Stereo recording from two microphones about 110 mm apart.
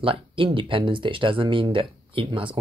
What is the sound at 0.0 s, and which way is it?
Speech, 55° right (ahead or behind).